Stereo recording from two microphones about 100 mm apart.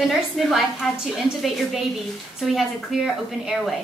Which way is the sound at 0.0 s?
Centre (ahead or behind).